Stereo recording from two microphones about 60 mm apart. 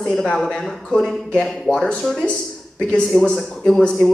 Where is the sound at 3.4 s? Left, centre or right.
Centre.